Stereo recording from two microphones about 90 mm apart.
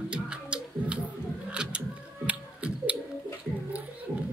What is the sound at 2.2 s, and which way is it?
Music, 15° right (ahead or behind).